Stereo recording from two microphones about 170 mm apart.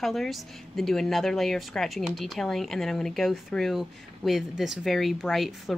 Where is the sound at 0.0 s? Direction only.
Centre (ahead or behind).